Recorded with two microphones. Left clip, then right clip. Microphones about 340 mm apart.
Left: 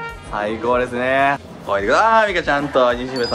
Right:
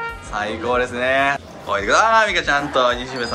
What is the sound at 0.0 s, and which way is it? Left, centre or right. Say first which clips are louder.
A man's voice: left 1 dB; centre.